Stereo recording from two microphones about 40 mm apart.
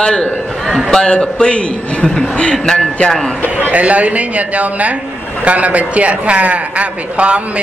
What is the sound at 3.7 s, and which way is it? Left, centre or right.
A man's voice, right.